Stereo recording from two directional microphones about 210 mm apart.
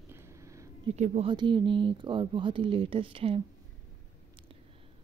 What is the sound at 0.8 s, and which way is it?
Speech, 35° right (ahead or behind).